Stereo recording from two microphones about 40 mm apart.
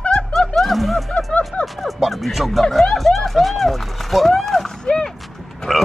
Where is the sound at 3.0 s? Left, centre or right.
Centre.